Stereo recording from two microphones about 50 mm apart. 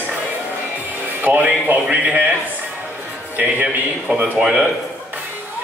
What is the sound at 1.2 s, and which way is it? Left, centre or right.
Speech, right.